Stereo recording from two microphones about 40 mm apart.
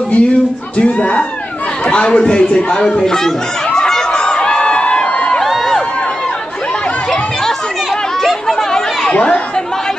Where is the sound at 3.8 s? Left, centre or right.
Centre.